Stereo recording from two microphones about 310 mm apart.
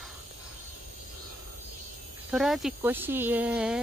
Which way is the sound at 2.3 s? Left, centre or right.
Centre.